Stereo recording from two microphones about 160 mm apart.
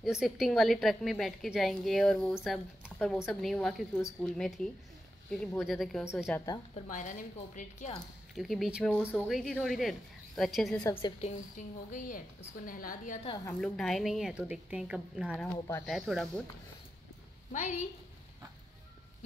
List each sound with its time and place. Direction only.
0.0 s a woman's voice: 5° right (ahead or behind)
6.9 s a woman's voice: 55° left (ahead or behind)
8.4 s a woman's voice: centre (ahead or behind)
10.8 s a woman's voice: 25° left (ahead or behind)
11.1 s a woman's voice: 50° left (ahead or behind)
13.5 s a woman's voice: 5° left (ahead or behind)
15.5 s speech: 15° left (ahead or behind)
15.8 s a woman's voice: centre (ahead or behind)
17.5 s a woman's voice: 45° left (ahead or behind)